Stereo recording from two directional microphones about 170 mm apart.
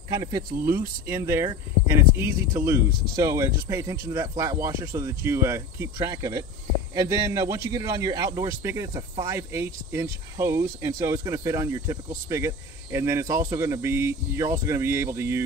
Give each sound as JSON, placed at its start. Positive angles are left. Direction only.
{"t": 0.1, "sound": "speech", "side_deg": -25}